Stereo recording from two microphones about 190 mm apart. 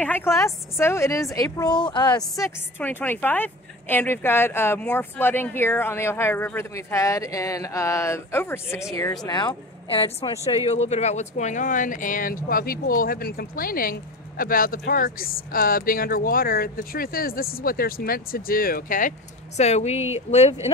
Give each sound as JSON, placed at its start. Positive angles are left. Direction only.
{"t": 0.0, "sound": "a woman's voice", "side_deg": 10}